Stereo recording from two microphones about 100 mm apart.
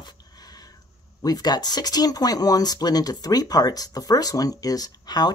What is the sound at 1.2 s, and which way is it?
Speech, 40° left (ahead or behind).